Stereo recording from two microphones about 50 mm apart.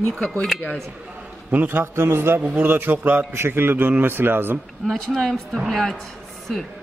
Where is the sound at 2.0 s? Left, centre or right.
Right.